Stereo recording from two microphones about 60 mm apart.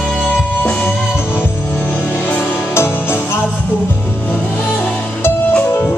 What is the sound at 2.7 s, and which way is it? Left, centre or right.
Music, left.